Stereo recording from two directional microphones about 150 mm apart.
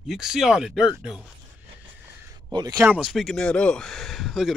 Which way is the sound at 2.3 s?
25° right (ahead or behind).